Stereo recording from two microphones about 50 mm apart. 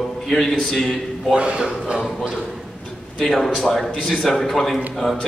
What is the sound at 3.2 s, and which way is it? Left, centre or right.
A man's voice, centre.